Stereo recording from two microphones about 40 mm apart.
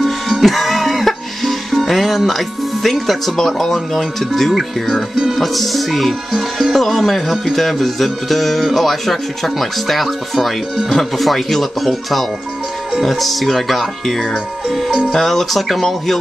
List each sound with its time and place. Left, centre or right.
0.0 s music: centre
15.0 s speech: centre